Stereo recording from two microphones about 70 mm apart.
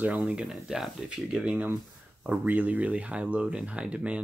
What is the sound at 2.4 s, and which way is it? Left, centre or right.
Speech, right.